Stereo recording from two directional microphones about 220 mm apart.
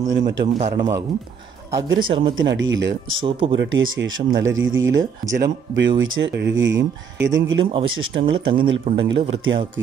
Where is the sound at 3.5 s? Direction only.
60° right (ahead or behind).